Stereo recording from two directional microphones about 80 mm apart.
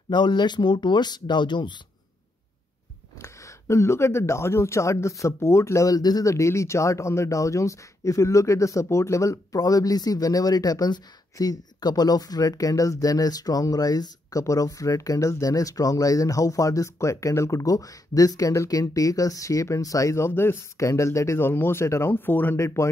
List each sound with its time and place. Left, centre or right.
0.1 s speech: left
3.2 s speech: left
6.3 s speech: left
21.4 s speech: left